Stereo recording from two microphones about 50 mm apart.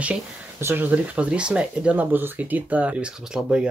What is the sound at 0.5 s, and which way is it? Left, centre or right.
Speech, right.